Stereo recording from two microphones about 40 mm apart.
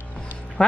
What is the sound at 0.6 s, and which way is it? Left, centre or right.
Speech, left.